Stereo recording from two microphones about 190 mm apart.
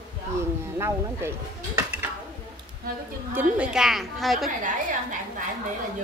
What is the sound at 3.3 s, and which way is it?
A woman's voice, 5° right (ahead or behind).